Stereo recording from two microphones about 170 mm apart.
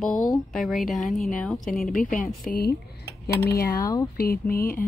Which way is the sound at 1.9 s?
50° left (ahead or behind).